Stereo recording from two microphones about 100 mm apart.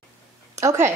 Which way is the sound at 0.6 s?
25° right (ahead or behind).